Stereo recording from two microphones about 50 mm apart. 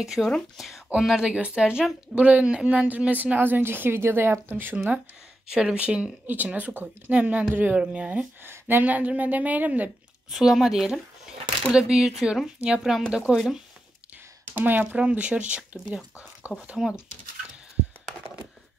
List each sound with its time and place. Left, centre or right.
0.0 s speech: centre
1.2 s speech: centre
2.1 s speech: right
4.7 s speech: right
6.2 s speech: right
7.5 s speech: right
7.8 s speech: right
8.4 s speech: right
8.8 s speech: right
10.3 s speech: centre
14.1 s a sound: right
15.0 s speech: right
16.7 s speech: centre